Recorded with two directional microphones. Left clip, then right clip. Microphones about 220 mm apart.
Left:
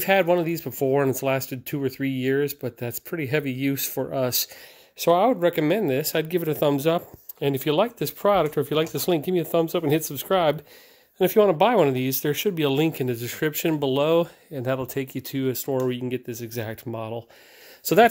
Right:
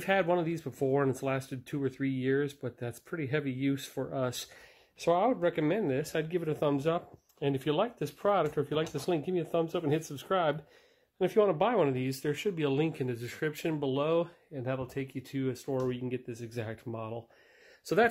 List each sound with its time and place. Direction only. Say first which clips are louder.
0.0 s speech: left 8 dB; 35° left (ahead or behind)
17.9 s speech: left 10 dB; 45° left (ahead or behind)